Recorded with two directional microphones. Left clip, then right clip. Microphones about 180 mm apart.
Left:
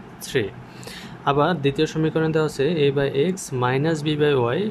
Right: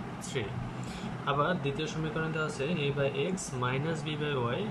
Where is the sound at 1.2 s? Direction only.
65° left (ahead or behind).